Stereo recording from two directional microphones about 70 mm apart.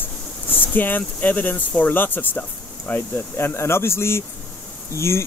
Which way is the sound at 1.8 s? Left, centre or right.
Left.